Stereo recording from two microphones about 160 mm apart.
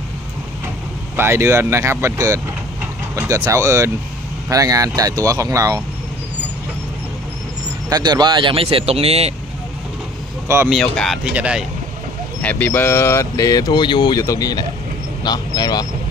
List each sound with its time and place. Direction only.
1.1 s speech: 15° right (ahead or behind)
7.9 s speech: 25° right (ahead or behind)
10.7 s speech: 5° left (ahead or behind)
12.4 s speech: 10° left (ahead or behind); by 15.9 s 25° left (ahead or behind)